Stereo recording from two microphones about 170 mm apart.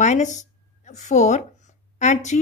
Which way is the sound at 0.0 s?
45° left (ahead or behind).